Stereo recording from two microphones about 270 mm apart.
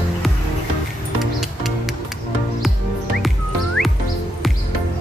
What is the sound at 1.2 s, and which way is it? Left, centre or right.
Music, centre.